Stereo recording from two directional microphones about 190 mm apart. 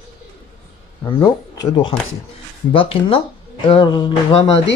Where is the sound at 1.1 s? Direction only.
20° left (ahead or behind).